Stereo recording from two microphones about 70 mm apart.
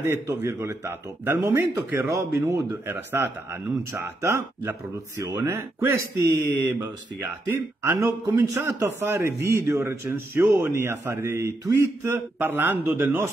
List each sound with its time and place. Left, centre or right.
0.0 s a man's voice: right
1.6 s a man's voice: right
2.3 s a man's voice: right
2.9 s a man's voice: right
12.4 s a man's voice: right